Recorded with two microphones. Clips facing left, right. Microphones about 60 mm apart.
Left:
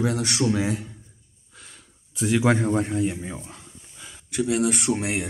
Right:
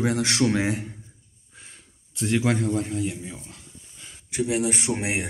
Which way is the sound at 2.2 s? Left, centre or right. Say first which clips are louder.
Left 2 dB; centre.